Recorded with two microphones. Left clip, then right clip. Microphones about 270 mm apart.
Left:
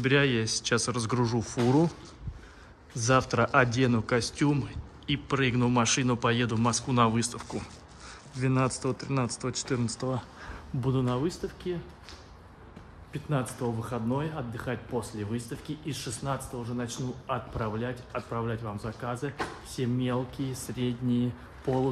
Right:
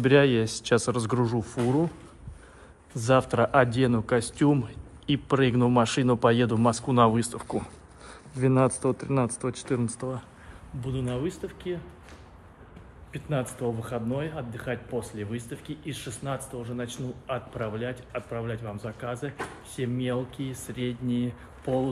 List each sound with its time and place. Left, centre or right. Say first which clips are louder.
0.0 s a man's voice: right 5 dB; centre
2.9 s a man's voice: right 2 dB; centre
10.8 s speech: left 2 dB; centre
13.1 s speech: right 2 dB; centre